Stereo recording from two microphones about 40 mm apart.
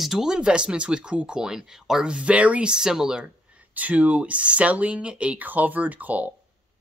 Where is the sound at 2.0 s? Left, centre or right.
Right.